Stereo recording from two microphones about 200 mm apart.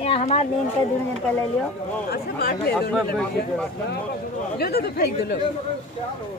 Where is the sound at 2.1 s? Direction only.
50° left (ahead or behind).